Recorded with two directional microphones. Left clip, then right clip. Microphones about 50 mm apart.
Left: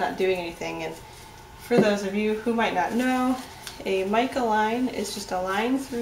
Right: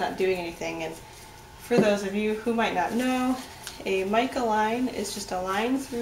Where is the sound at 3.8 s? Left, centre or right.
Centre.